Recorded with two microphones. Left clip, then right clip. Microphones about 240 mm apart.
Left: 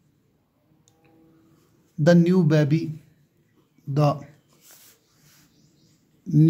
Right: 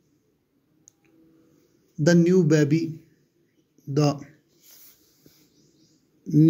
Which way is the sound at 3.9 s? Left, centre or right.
Centre.